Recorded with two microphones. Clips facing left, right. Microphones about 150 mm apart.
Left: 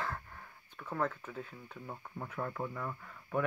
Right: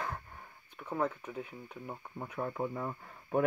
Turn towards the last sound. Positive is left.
turn(degrees=-25)  # may be behind; listen again after turning